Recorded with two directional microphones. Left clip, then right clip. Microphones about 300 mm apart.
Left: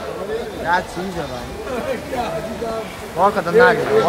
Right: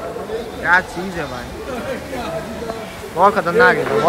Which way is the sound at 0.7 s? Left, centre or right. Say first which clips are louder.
Right 4 dB; centre.